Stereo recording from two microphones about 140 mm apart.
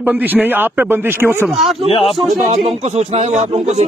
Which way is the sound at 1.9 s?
40° left (ahead or behind).